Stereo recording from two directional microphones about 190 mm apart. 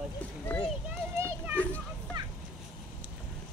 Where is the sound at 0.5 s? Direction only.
10° left (ahead or behind).